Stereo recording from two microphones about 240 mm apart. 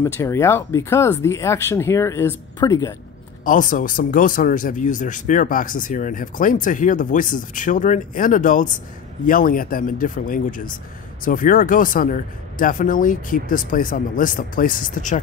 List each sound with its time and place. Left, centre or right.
0.0 s speech: centre
3.4 s a man's voice: left